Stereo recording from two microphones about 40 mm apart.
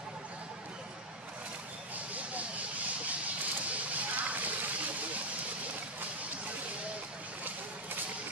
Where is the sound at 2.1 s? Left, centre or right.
Right.